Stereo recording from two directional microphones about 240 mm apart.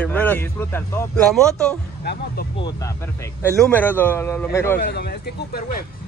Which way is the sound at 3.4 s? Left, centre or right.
Centre.